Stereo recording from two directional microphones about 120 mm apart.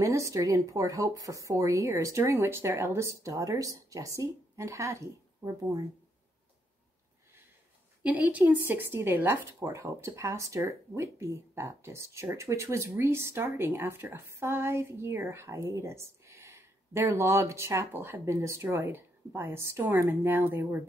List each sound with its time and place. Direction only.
0.0 s speech: 25° right (ahead or behind)
8.0 s speech: 10° right (ahead or behind)